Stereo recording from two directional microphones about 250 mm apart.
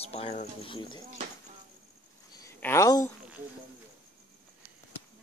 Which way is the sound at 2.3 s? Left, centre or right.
Centre.